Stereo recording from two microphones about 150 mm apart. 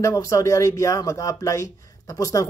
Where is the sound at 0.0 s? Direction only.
20° left (ahead or behind).